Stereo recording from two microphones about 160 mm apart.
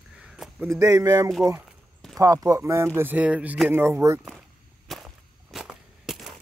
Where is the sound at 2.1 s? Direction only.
20° right (ahead or behind).